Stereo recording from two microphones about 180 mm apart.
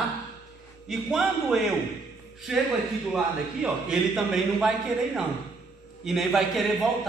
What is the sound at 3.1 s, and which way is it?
A man's voice, 5° right (ahead or behind).